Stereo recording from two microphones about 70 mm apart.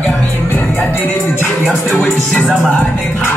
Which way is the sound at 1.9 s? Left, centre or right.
Centre.